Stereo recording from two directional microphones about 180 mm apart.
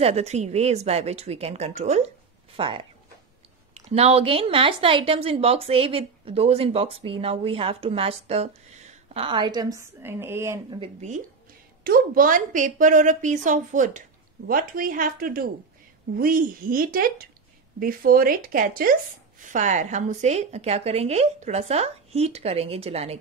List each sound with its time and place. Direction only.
0.0 s a woman's voice: 35° right (ahead or behind)
3.9 s a woman's voice: 35° right (ahead or behind); by 10.6 s 15° right (ahead or behind)
10.7 s speech: 30° right (ahead or behind)
11.8 s a woman's voice: 55° right (ahead or behind); by 23.1 s 35° right (ahead or behind)